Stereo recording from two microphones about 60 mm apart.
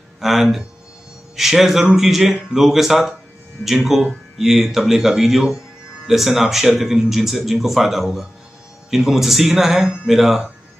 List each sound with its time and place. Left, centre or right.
0.2 s speech: centre